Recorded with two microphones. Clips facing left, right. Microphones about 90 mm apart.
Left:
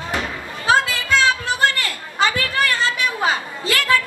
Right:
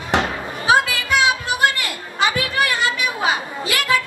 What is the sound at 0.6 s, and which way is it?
Children playing, 15° right (ahead or behind).